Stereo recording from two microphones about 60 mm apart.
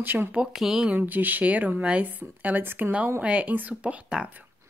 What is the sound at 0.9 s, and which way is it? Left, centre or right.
Speech, right.